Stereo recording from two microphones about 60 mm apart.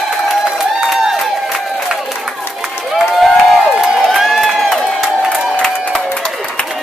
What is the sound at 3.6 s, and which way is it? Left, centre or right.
Crowd, centre.